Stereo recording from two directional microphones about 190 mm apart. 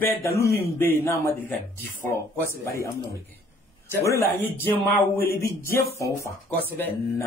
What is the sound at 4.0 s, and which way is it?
Speech, 15° left (ahead or behind).